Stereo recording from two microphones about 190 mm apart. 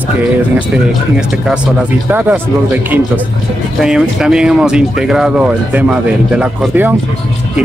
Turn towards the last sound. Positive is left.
turn(degrees=-5)  # may be behind; listen again after turning